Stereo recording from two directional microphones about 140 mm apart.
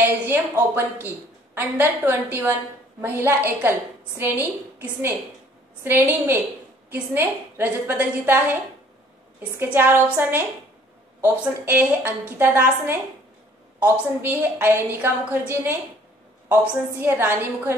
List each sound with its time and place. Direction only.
0.0 s a woman's voice: 15° right (ahead or behind)
17.0 s a woman's voice: 15° right (ahead or behind)